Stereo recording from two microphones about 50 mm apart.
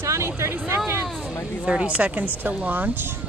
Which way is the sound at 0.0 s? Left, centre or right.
Right.